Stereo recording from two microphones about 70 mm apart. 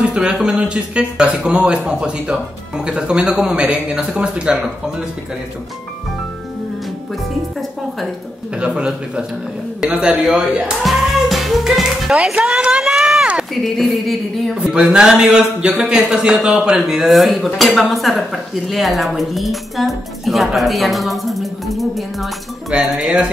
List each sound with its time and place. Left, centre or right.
0.0 s speech: centre
8.5 s speech: centre
10.8 s speech: centre
12.7 s run: centre
13.2 s a sound: centre
13.7 s speech: centre